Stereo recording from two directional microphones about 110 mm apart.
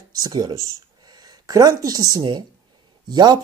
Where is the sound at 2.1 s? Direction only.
40° right (ahead or behind).